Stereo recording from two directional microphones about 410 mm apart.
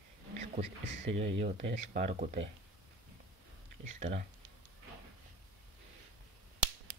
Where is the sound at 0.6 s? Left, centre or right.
Centre.